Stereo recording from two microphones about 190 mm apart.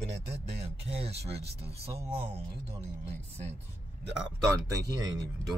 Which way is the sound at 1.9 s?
30° right (ahead or behind).